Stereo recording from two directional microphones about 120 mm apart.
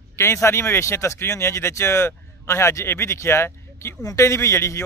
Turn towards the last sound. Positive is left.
turn(degrees=25)  # may be behind; listen again after turning